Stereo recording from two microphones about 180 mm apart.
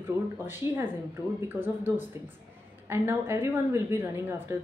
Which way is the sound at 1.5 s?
10° right (ahead or behind).